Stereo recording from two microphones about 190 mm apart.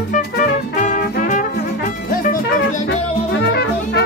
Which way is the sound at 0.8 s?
40° left (ahead or behind).